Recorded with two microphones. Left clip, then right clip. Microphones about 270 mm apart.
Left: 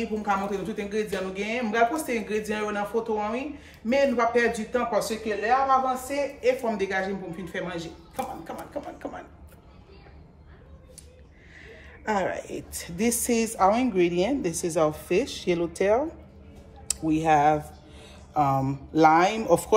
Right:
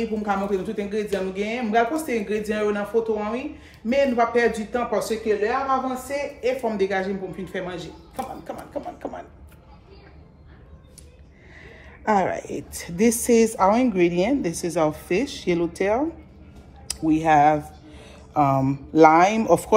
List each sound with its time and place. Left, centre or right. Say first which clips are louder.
0.0 s speech: right 2 dB; centre
11.6 s a woman's voice: right 6 dB; centre